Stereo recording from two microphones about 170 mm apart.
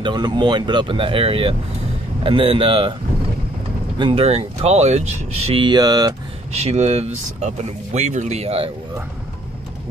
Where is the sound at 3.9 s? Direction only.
30° right (ahead or behind).